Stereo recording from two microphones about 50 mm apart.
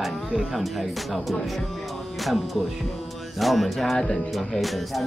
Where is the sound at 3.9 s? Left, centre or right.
Centre.